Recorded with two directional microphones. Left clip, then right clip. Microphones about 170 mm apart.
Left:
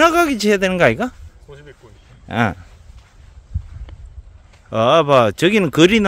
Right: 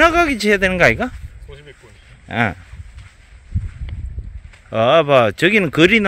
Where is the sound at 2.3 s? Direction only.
20° left (ahead or behind).